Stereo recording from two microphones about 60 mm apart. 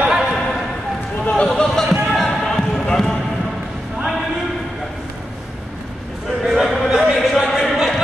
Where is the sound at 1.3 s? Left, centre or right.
Centre.